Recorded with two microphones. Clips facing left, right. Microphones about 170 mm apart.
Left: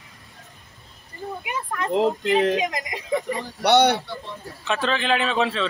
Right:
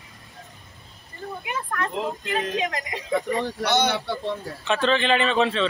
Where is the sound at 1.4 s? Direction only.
15° left (ahead or behind).